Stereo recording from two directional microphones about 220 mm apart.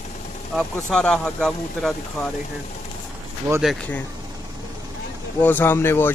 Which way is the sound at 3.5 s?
Centre (ahead or behind).